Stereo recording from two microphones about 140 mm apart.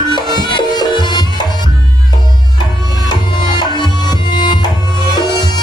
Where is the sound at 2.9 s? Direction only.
30° left (ahead or behind).